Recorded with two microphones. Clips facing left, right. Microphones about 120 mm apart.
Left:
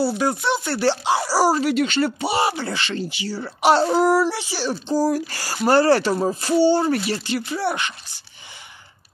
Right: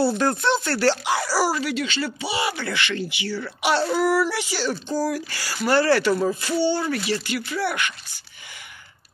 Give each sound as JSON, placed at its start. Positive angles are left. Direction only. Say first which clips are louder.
{"t": 0.0, "sound": "speech", "louder": "even", "side_deg": 5}
{"t": 1.0, "sound": "speech", "louder": "left 4 dB", "side_deg": 30}
{"t": 4.9, "sound": "speech", "louder": "left 8 dB", "side_deg": 40}